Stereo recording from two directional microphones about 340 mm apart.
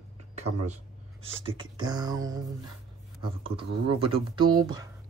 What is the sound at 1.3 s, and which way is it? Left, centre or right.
Speech, centre.